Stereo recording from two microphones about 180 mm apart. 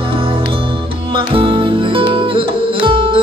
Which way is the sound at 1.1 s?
30° right (ahead or behind).